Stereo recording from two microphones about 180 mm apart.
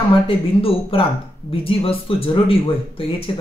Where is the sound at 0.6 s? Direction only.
30° left (ahead or behind).